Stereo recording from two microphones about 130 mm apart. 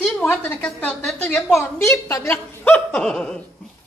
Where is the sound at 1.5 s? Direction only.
20° left (ahead or behind).